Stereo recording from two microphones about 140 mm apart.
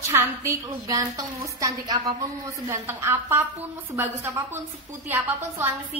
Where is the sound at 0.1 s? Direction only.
20° right (ahead or behind).